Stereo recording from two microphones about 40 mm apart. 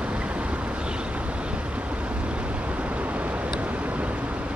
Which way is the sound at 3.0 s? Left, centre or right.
Right.